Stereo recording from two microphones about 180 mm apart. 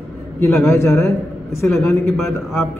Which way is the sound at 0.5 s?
5° left (ahead or behind).